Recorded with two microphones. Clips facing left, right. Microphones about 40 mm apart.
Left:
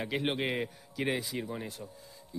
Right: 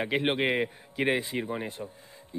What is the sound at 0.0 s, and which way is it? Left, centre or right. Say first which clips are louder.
Speech: right 5 dB; right.